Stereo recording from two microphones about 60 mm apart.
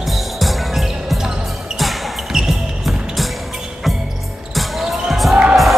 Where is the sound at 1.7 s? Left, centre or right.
Centre.